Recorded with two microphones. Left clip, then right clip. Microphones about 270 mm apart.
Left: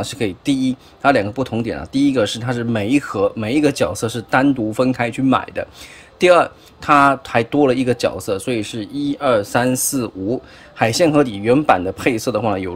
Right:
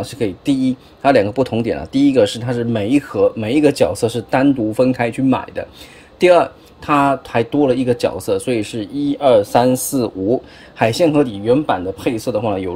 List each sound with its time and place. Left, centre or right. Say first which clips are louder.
0.0 s speech: right 1 dB; centre
9.9 s speech: right 4 dB; centre
10.3 s speech: right 5 dB; centre